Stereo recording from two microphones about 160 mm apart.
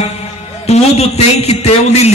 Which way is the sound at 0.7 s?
40° left (ahead or behind).